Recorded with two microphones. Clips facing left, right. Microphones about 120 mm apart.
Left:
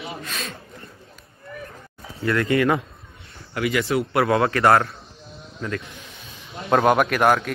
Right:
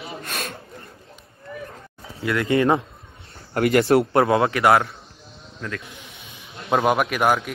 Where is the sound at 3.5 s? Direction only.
50° right (ahead or behind).